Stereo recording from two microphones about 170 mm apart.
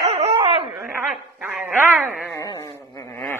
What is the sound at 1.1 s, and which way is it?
Dog, 5° right (ahead or behind).